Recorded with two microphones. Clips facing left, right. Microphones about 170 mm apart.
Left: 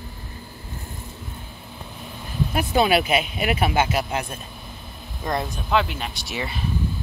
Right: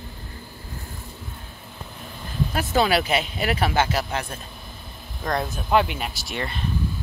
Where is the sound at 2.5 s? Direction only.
15° left (ahead or behind).